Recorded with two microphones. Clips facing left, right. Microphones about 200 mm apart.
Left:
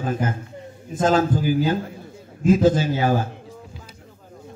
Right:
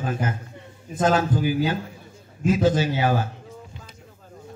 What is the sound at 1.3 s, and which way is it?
Music, 50° left (ahead or behind).